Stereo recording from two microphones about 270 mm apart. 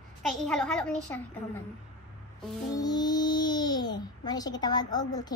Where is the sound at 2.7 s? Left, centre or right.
Centre.